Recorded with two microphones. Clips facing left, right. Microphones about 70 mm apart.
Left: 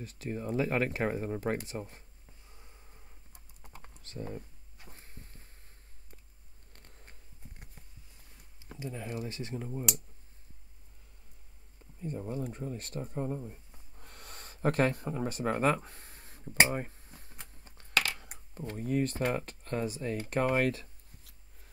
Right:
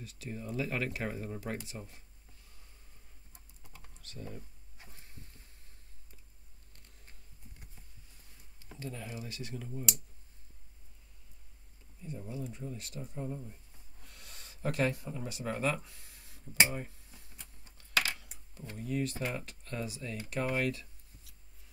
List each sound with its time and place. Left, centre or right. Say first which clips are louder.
0.0 s speech: left 5 dB; left
3.7 s typing: left 6 dB; left
4.8 s a sound: left 3 dB; left
6.7 s bee: left 5 dB; left
8.7 s speech: left 2 dB; centre
9.3 s speech: left 4 dB; left
12.0 s speech: left 5 dB; left